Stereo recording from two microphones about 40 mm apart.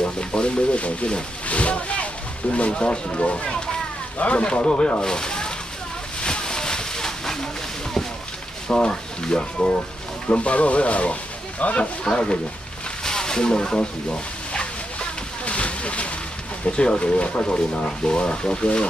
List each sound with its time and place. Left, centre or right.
0.0 s speech: left
5.0 s speech: centre
6.2 s a sound: left
8.6 s speech: left
12.0 s speech: left
13.0 s a sound: centre; by 16.1 s left
16.6 s speech: left